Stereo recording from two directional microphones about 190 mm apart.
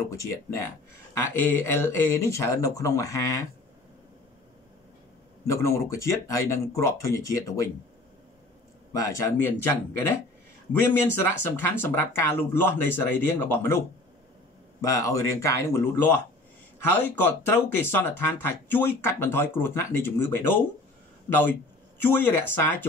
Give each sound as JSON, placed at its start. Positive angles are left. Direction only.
{"t": 0.1, "sound": "speech", "side_deg": 15}
{"t": 5.5, "sound": "speech", "side_deg": 15}
{"t": 8.9, "sound": "speech", "side_deg": 15}
{"t": 11.2, "sound": "speech", "side_deg": 10}